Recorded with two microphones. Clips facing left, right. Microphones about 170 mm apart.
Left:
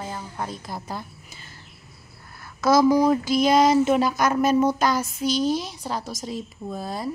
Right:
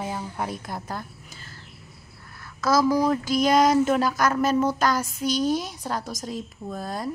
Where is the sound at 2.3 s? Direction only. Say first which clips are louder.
Left 3 dB; 25° left (ahead or behind).